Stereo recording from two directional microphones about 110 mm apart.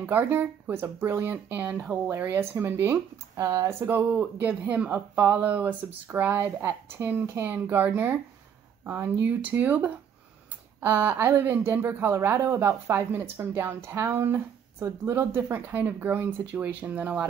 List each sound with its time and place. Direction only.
0.0 s speech: 20° right (ahead or behind)